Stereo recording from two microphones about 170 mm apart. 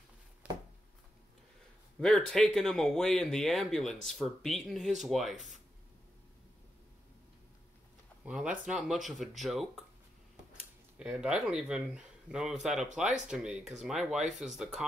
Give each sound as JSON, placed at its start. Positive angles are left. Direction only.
{"t": 0.4, "sound": "a sound", "side_deg": -5}
{"t": 2.0, "sound": "speech", "side_deg": 5}
{"t": 8.3, "sound": "speech", "side_deg": -5}
{"t": 11.0, "sound": "speech", "side_deg": -5}